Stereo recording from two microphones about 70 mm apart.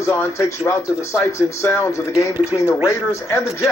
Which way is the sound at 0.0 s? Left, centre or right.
Left.